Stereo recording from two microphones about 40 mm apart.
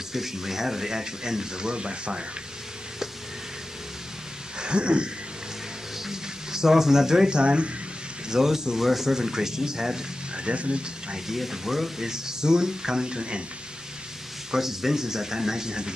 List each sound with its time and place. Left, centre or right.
0.1 s speech: centre
4.6 s a sound: right
6.0 s speech: centre
8.3 s speech: centre
10.3 s speech: right
11.2 s speech: centre
14.5 s speech: centre